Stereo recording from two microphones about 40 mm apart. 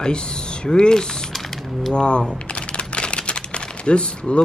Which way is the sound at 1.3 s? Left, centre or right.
Centre.